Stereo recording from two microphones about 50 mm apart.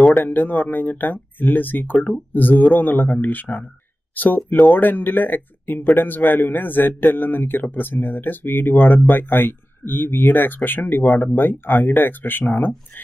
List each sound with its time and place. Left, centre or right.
0.2 s a man's voice: left